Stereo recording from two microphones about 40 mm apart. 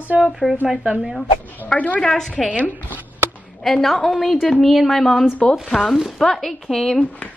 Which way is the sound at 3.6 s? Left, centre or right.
Centre.